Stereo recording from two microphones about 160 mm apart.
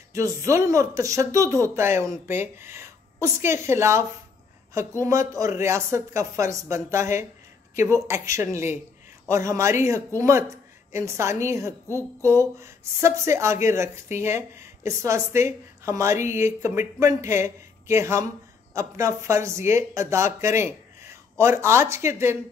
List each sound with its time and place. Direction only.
0.1 s a woman's voice: 20° right (ahead or behind)
5.0 s a woman's voice: 20° right (ahead or behind)